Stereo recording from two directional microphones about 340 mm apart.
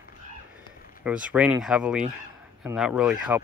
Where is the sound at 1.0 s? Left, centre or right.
Centre.